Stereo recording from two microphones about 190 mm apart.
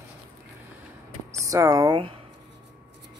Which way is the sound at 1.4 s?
15° right (ahead or behind).